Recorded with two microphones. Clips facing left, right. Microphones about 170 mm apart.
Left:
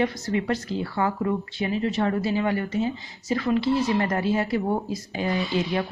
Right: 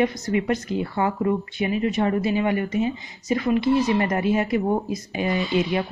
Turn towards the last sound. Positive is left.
turn(degrees=-15)  # may be behind; listen again after turning